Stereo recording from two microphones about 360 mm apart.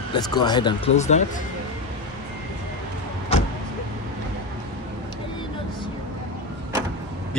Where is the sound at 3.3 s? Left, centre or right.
Centre.